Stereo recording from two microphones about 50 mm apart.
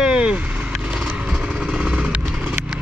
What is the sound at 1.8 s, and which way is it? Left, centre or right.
Vehicle, right.